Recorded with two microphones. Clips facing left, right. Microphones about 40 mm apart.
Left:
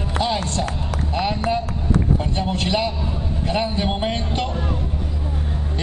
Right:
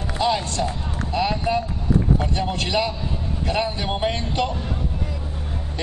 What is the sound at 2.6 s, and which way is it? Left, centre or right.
Speech, centre.